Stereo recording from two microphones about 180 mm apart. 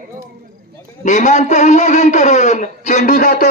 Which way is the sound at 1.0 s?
40° left (ahead or behind).